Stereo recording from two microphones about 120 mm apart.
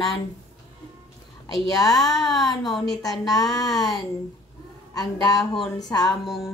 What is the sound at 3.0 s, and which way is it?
Speech, 30° left (ahead or behind).